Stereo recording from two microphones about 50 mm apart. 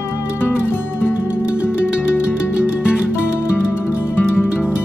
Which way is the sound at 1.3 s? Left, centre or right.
Right.